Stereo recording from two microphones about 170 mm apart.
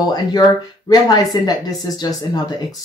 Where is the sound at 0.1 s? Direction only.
25° left (ahead or behind).